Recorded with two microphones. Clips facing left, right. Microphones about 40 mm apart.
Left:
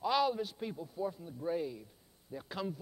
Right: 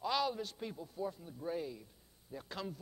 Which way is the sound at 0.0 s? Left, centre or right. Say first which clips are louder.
Left 4 dB; centre.